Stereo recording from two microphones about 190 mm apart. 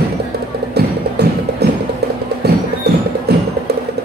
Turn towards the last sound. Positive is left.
turn(degrees=-55)  # may be behind; listen again after turning